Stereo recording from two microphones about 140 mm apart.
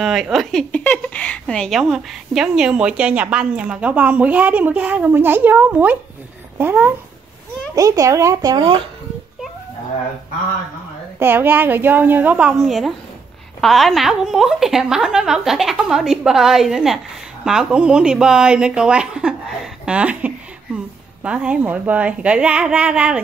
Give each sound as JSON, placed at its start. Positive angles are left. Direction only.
{"t": 0.0, "sound": "speech", "side_deg": 0}
{"t": 7.7, "sound": "speech", "side_deg": -25}
{"t": 11.1, "sound": "a woman's voice", "side_deg": -15}